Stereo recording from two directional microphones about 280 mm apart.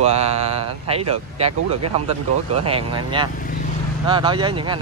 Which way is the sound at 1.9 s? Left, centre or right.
Right.